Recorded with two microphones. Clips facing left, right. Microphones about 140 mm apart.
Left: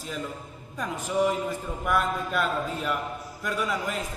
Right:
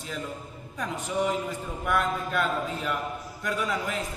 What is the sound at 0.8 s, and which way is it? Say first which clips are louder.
A man's voice: left 3 dB; centre (ahead or behind).